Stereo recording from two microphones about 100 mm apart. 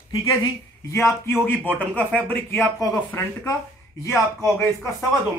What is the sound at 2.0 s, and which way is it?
Speech, 15° left (ahead or behind).